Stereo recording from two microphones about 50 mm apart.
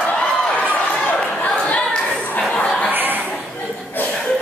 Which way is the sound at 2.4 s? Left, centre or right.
Centre.